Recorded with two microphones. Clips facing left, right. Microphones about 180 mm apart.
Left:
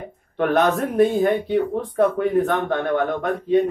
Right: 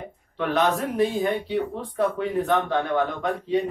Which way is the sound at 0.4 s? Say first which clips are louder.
Left 4 dB; 55° left (ahead or behind).